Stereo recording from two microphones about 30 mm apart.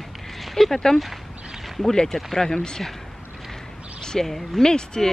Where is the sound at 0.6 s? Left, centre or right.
Centre.